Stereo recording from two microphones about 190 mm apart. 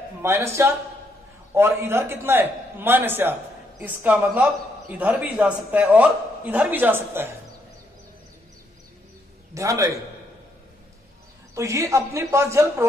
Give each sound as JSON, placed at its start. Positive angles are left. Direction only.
{"t": 0.2, "sound": "a man's voice", "side_deg": -15}
{"t": 9.5, "sound": "a man's voice", "side_deg": -15}
{"t": 11.5, "sound": "a man's voice", "side_deg": -15}